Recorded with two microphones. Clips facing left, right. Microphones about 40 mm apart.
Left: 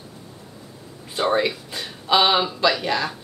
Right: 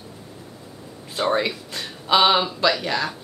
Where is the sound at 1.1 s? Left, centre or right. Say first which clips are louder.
Left 1 dB; centre.